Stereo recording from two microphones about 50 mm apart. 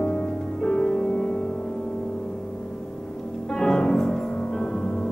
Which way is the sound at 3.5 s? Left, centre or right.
Centre.